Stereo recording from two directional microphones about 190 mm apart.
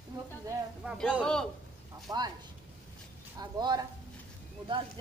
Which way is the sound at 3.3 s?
20° right (ahead or behind).